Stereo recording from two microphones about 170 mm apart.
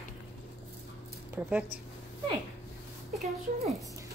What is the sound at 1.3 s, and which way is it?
Speech, 10° right (ahead or behind).